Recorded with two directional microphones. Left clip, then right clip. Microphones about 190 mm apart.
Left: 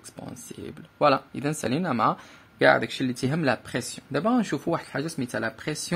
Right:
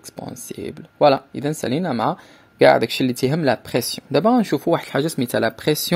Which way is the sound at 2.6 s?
35° right (ahead or behind).